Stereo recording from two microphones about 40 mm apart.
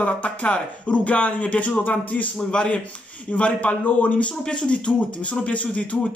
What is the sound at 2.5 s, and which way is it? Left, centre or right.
Speech, left.